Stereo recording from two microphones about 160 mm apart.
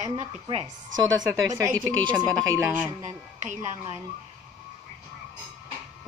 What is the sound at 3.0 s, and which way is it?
Speech, 50° right (ahead or behind).